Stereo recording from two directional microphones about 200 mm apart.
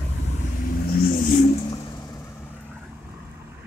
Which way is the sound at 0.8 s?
45° left (ahead or behind).